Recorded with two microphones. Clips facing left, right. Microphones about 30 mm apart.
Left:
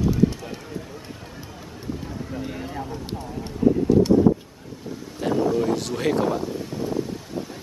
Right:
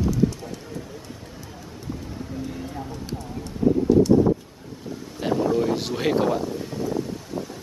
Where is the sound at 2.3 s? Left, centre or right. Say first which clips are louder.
Left 1 dB; left.